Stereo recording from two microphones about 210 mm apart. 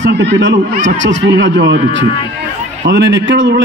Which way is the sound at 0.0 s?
60° right (ahead or behind).